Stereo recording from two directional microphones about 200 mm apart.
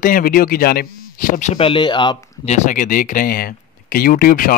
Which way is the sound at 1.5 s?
25° left (ahead or behind).